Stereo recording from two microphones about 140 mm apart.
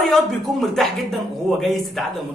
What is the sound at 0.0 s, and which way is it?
Speech, centre (ahead or behind).